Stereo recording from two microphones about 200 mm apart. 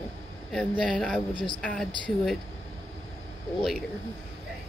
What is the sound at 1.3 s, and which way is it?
Speech, 25° left (ahead or behind).